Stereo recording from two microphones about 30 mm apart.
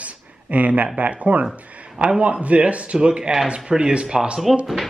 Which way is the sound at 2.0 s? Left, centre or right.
Right.